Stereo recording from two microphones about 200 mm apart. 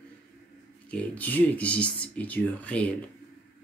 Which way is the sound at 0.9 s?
10° left (ahead or behind).